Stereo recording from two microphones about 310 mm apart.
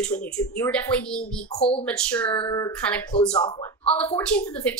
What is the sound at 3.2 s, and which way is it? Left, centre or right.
Speech, centre.